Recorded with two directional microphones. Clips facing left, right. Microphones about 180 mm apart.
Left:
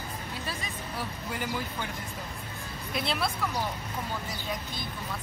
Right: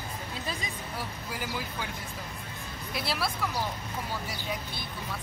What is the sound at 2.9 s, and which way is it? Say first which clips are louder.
Speech: left 2 dB; 5° right (ahead or behind).